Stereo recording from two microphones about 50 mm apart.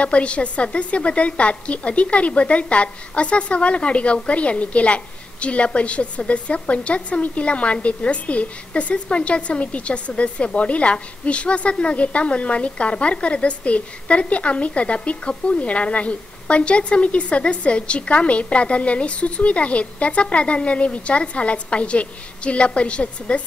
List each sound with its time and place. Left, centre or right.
0.0 s a woman's voice: left